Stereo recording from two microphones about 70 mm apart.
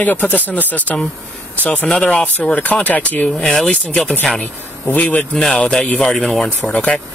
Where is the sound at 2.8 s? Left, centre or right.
Left.